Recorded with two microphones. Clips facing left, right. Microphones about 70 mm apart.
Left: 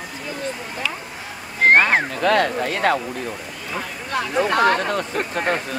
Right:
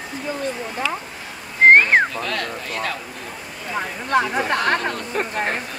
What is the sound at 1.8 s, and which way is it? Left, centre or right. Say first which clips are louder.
Speech: even; left.